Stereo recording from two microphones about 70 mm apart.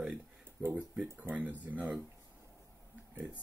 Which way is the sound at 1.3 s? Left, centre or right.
Right.